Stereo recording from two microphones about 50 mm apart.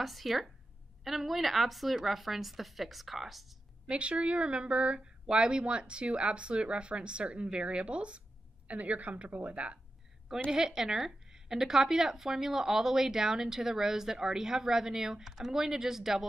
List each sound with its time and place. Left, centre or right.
0.0 s a woman's voice: centre
3.9 s speech: right
10.5 s a woman's voice: centre